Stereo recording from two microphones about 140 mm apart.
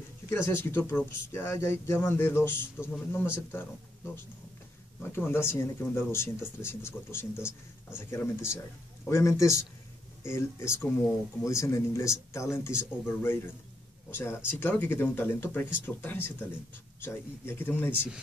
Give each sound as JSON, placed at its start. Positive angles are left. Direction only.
{"t": 0.3, "sound": "speech", "side_deg": 15}